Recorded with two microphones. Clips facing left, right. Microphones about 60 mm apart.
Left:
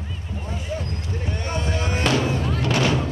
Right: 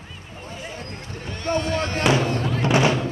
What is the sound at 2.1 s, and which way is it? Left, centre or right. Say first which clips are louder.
Fireworks: right 2 dB; centre.